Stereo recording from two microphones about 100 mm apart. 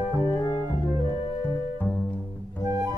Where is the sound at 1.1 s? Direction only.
65° left (ahead or behind).